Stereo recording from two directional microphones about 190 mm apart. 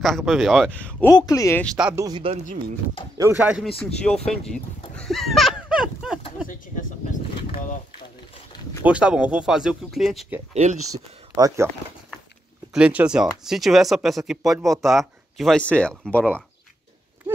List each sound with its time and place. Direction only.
0.0 s speech: centre (ahead or behind)
1.1 s speech: 20° left (ahead or behind)
1.6 s speech: centre (ahead or behind)
2.0 s speech: 20° right (ahead or behind)
3.2 s speech: 10° right (ahead or behind)
3.8 s speech: 5° left (ahead or behind)
4.9 s a sound: 5° left (ahead or behind)
6.7 s vehicle: 45° left (ahead or behind)
8.8 s speech: 5° right (ahead or behind)
10.5 s speech: 35° right (ahead or behind)
11.3 s speech: 15° right (ahead or behind)
12.7 s speech: 5° right (ahead or behind)